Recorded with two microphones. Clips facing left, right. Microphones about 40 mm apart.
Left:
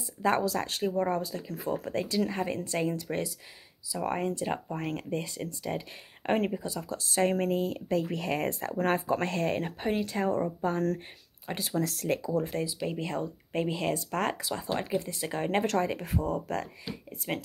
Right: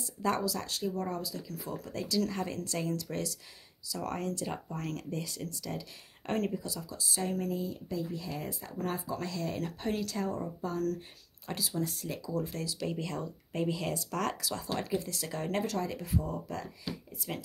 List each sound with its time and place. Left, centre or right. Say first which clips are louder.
0.0 s speech: left 4 dB; left
6.8 s speech: left 12 dB; left
9.6 s speech: left 4 dB; left
11.5 s speech: left 3 dB; centre
11.8 s speech: left 6 dB; left
12.4 s speech: left 5 dB; left
12.6 s speech: left 3 dB; left
15.6 s speech: left 6 dB; left